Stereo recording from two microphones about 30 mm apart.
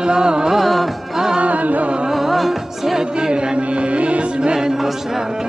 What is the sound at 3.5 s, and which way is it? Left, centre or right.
Music, right.